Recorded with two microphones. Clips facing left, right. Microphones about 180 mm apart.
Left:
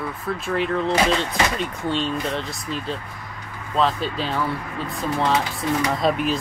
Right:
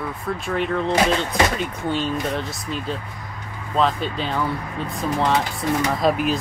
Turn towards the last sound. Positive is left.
turn(degrees=0)  # may be behind; listen again after turning